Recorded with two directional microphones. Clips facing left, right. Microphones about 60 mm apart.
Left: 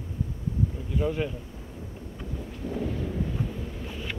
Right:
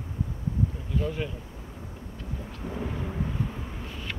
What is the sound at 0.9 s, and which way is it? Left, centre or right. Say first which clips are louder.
Speech: left 5 dB; centre.